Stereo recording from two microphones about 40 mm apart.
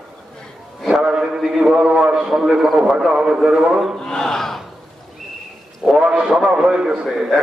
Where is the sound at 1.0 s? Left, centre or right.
Centre.